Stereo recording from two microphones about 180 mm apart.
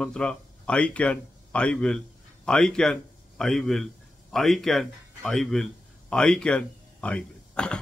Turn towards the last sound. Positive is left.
turn(degrees=5)  # may be behind; listen again after turning